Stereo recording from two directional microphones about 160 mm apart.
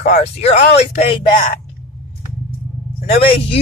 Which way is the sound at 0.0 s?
45° left (ahead or behind).